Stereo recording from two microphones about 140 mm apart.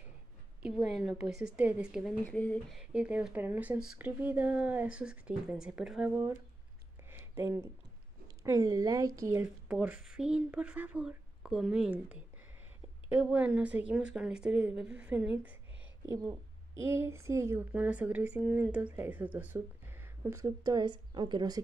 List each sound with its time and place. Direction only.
0.6 s a woman's voice: 10° right (ahead or behind)
2.2 s speech: 10° left (ahead or behind)
2.7 s speech: 5° right (ahead or behind)
7.1 s a sound: 15° right (ahead or behind)
8.5 s a woman's voice: 25° right (ahead or behind)
9.4 s speech: 10° right (ahead or behind)
16.3 s speech: 20° right (ahead or behind)